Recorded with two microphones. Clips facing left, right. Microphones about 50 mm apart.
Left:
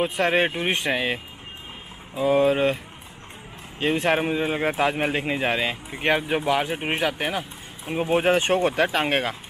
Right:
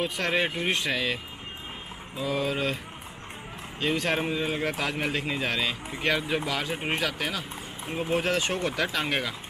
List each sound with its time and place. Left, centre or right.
0.0 s speech: left
3.8 s speech: left